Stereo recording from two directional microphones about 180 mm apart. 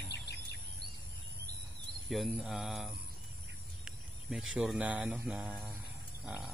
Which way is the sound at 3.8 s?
5° right (ahead or behind).